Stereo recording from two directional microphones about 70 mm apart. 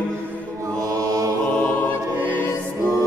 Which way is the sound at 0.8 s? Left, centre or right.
Right.